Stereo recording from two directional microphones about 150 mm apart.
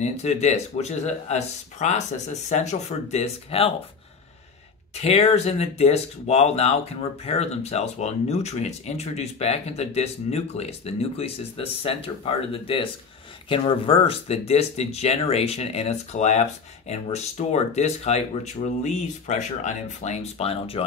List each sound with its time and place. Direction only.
0.0 s speech: 45° left (ahead or behind)
4.9 s speech: 45° left (ahead or behind)